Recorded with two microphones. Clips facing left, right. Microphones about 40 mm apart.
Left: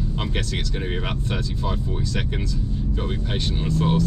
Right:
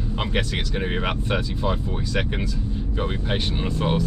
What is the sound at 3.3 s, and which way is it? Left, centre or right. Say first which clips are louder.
Speech: even; centre.